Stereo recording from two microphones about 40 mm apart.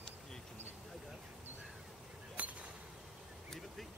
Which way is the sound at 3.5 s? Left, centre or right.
Centre.